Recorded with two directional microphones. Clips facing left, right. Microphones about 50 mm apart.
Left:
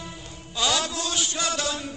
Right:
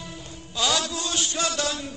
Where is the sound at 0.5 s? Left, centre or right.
Left.